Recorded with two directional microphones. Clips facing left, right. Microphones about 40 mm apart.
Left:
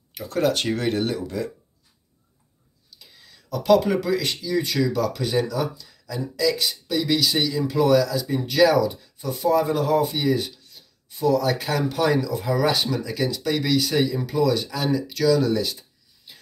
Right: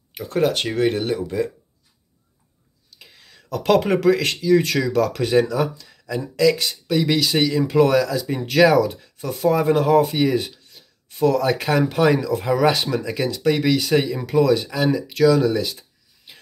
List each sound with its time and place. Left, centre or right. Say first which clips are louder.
0.1 s speech: right 2 dB; right
3.0 s speech: right 4 dB; right
14.8 s speech: right 3 dB; centre
15.1 s speech: right 4 dB; right